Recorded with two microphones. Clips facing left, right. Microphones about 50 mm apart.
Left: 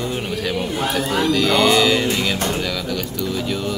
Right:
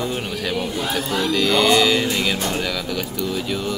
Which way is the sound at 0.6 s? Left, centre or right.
Left.